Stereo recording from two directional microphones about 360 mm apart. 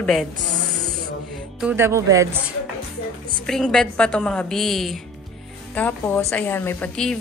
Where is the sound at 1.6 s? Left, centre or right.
Centre.